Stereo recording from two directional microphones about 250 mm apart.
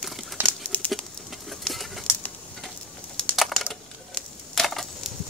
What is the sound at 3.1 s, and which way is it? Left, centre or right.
Crushing, centre.